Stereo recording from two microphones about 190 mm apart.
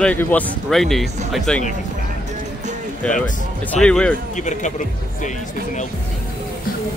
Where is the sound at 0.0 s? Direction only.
10° left (ahead or behind).